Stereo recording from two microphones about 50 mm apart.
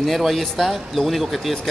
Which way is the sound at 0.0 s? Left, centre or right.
Centre.